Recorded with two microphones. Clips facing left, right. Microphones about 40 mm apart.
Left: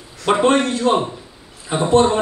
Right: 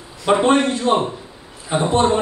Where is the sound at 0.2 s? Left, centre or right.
Centre.